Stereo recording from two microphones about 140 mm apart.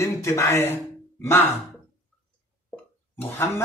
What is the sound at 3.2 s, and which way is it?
Speech, 15° left (ahead or behind).